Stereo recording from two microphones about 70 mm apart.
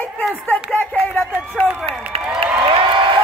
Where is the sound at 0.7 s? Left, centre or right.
Left.